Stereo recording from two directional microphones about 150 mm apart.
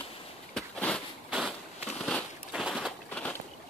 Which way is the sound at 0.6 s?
5° left (ahead or behind).